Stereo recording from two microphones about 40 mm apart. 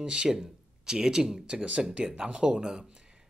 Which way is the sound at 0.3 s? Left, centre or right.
Centre.